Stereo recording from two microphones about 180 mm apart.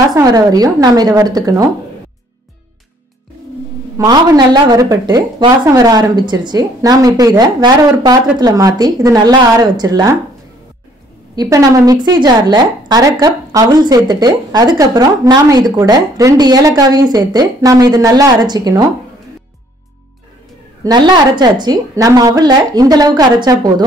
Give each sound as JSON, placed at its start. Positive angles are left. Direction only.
{"t": 0.1, "sound": "a woman's voice", "side_deg": -20}
{"t": 4.0, "sound": "a woman's voice", "side_deg": -20}
{"t": 11.3, "sound": "a woman's voice", "side_deg": -20}
{"t": 20.8, "sound": "a woman's voice", "side_deg": -25}